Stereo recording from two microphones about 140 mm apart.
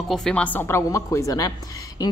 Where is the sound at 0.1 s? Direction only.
5° left (ahead or behind).